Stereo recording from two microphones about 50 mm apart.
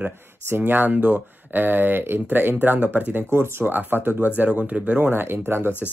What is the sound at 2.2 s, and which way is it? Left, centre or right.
Speech, right.